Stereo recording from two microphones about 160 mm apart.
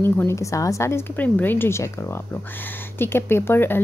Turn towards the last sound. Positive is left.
turn(degrees=15)  # may be behind; listen again after turning